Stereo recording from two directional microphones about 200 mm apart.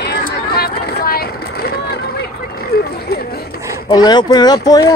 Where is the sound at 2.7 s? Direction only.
50° left (ahead or behind).